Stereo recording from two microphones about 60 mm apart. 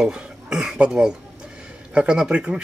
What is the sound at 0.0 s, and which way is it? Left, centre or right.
Speech, centre.